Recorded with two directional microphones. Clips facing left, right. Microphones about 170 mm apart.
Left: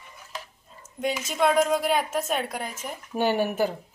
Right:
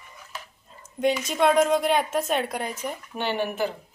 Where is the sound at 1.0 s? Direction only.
5° left (ahead or behind).